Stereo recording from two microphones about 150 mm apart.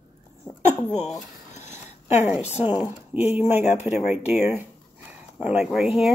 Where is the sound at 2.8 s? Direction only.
10° right (ahead or behind).